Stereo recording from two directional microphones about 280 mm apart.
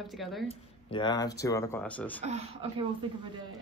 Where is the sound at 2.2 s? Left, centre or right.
Right.